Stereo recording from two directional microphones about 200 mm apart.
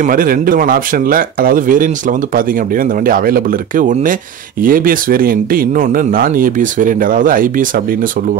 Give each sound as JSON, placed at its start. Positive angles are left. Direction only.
{"t": 0.0, "sound": "speech", "side_deg": -45}